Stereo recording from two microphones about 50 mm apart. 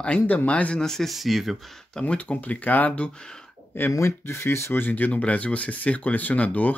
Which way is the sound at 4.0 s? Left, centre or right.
Left.